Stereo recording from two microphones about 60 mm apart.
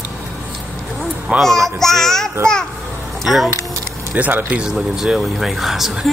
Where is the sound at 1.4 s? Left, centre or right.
Centre.